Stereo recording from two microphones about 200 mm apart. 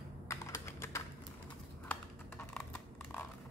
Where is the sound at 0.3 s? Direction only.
15° left (ahead or behind).